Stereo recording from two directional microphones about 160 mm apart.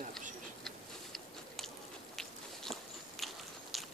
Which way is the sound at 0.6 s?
Centre (ahead or behind).